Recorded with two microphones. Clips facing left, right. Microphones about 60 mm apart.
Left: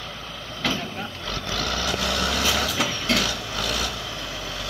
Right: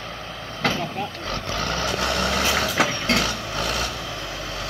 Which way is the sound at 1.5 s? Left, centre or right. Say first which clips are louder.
Right 1 dB; right.